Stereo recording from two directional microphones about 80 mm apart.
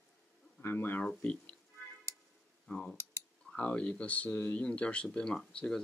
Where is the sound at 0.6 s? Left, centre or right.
Left.